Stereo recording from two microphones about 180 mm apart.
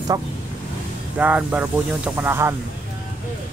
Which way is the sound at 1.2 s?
10° right (ahead or behind).